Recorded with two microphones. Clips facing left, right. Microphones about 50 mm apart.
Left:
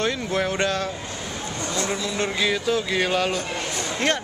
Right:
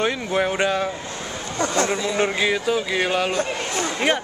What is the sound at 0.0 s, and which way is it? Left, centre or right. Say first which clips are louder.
A man's voice: right 2 dB; centre.